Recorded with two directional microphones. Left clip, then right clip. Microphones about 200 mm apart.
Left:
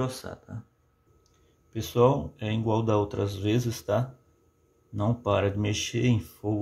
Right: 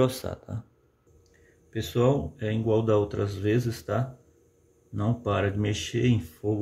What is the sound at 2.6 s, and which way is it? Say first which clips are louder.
Speech: right 2 dB; 20° left (ahead or behind).